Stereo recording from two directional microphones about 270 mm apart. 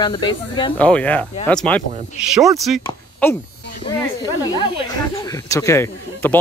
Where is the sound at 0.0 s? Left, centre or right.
Centre.